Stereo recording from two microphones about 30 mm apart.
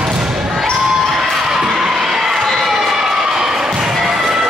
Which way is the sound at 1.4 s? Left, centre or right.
Centre.